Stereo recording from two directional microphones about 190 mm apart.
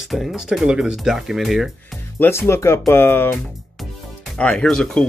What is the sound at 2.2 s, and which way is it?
Speech, 15° left (ahead or behind).